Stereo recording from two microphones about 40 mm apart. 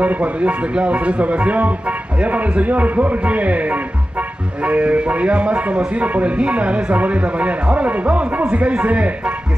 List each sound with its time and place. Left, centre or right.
0.0 s speech: right